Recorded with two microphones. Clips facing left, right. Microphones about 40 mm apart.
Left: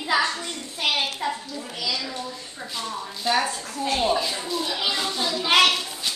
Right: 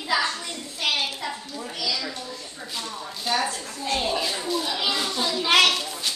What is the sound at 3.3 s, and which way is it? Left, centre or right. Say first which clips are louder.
Speech: left 3 dB; centre.